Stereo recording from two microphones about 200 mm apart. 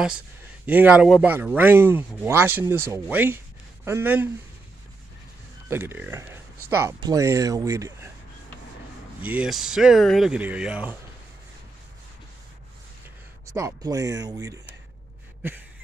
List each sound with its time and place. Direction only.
0.7 s speech: 5° right (ahead or behind)
5.7 s speech: 10° right (ahead or behind)
9.2 s speech: 5° right (ahead or behind)
13.5 s speech: 15° right (ahead or behind)